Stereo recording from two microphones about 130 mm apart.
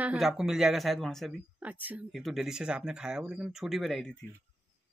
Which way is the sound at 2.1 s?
Centre (ahead or behind).